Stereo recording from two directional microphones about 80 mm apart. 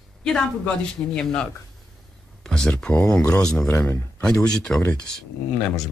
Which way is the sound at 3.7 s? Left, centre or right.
Left.